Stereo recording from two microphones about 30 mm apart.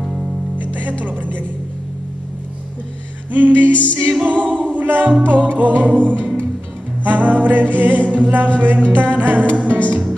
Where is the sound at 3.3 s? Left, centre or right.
Right.